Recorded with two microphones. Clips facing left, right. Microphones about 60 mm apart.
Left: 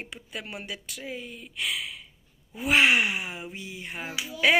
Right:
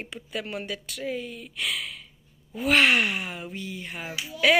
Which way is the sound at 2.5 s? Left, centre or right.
Centre.